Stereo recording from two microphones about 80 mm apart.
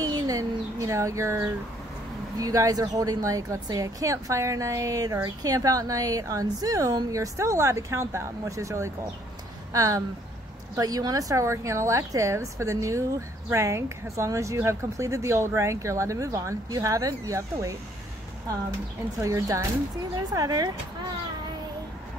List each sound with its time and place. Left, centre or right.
0.0 s a sound: right
2.3 s a woman's voice: right
19.1 s a woman's voice: right